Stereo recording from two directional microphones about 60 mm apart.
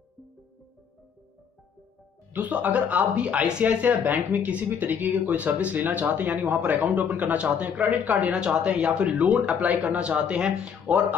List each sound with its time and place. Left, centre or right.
2.3 s speech: right
8.3 s speech: centre